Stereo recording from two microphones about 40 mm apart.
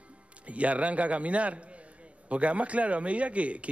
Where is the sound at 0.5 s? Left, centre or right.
Right.